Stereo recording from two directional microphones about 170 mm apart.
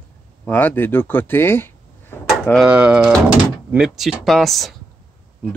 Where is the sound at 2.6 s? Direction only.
5° right (ahead or behind).